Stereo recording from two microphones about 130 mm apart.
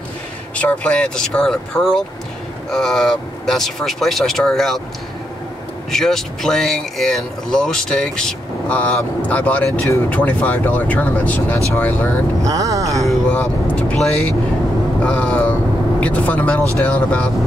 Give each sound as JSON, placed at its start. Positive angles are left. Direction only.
{"t": 0.6, "sound": "speech", "side_deg": 10}
{"t": 5.9, "sound": "speech", "side_deg": 5}
{"t": 12.4, "sound": "speech", "side_deg": -25}
{"t": 13.0, "sound": "speech", "side_deg": 5}